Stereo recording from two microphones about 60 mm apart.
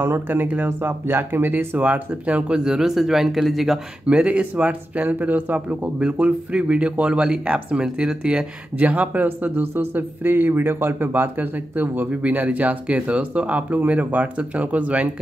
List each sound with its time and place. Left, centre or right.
0.0 s speech: right
1.8 s speech: right
2.5 s speech: centre
4.1 s speech: centre